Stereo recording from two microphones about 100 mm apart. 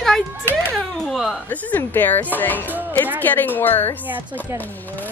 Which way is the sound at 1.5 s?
15° left (ahead or behind).